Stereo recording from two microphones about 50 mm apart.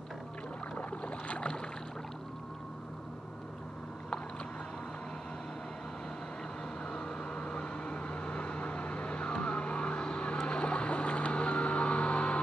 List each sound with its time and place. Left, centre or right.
0.7 s boat: left
6.9 s vehicle: centre
10.4 s boat: left